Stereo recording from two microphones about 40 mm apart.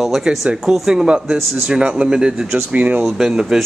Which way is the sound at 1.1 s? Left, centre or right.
Right.